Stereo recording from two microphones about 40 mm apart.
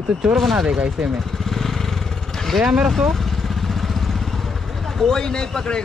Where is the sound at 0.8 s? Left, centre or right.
Centre.